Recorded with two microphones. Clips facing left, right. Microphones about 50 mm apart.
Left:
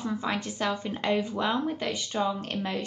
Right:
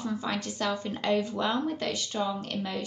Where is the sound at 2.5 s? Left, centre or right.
Left.